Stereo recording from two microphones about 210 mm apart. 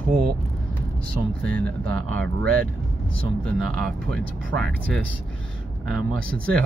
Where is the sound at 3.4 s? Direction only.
5° left (ahead or behind).